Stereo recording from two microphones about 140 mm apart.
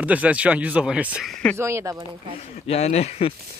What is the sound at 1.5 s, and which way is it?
Speech, 20° right (ahead or behind).